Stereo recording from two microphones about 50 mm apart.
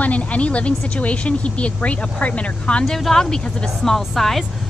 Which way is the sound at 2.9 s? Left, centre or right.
Centre.